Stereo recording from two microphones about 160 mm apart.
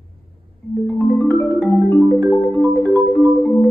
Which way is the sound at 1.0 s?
10° left (ahead or behind).